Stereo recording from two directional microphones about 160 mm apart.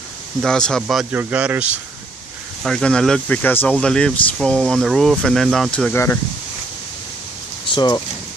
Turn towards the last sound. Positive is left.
turn(degrees=25)  # may be behind; listen again after turning